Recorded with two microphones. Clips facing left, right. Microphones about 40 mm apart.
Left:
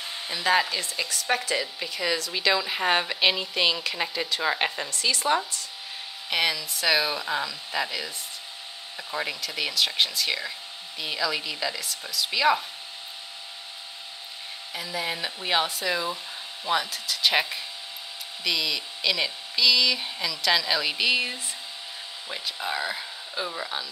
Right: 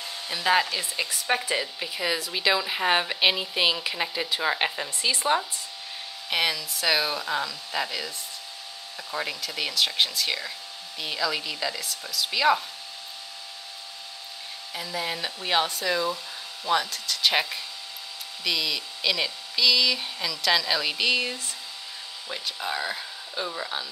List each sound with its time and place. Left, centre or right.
0.3 s a woman's voice: centre
0.9 s a woman's voice: centre
4.8 s speech: centre
6.3 s a woman's voice: centre
14.7 s a woman's voice: centre